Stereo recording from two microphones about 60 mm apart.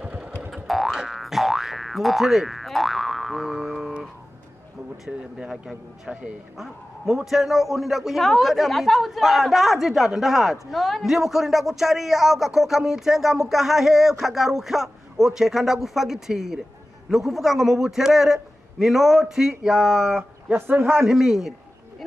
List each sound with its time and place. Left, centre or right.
0.0 s boing: centre
0.7 s boing: centre
5.0 s a man's voice: centre
20.5 s a man's voice: right
21.0 s a man's voice: centre